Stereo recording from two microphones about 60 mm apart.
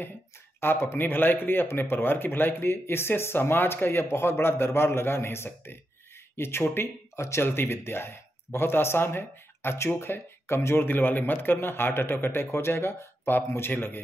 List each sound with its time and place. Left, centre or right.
0.6 s speech: left